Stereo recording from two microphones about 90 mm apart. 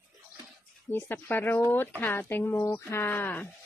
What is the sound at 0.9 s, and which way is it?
Speech, 25° left (ahead or behind).